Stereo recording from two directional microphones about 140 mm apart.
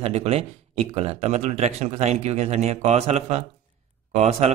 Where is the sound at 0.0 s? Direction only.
45° right (ahead or behind).